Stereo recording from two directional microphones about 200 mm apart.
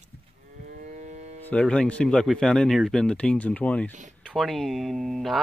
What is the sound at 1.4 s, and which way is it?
Speech, 5° left (ahead or behind).